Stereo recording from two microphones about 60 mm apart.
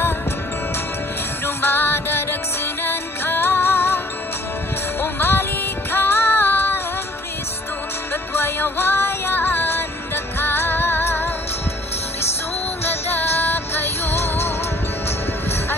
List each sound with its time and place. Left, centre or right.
1.4 s music: left
5.0 s music: left
8.1 s music: left
9.3 s music: left
12.8 s music: left